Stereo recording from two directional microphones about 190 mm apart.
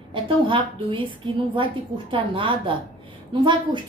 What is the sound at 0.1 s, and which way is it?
A woman's voice, 25° right (ahead or behind).